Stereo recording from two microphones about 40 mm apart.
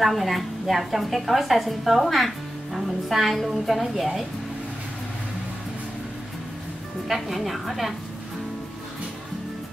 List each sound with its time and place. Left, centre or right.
0.0 s a woman's voice: centre
7.1 s a woman's voice: centre